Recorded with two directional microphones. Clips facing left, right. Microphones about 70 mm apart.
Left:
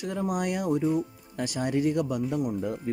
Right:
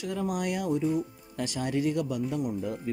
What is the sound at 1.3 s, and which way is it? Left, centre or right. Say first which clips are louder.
Speech: left 2 dB; left.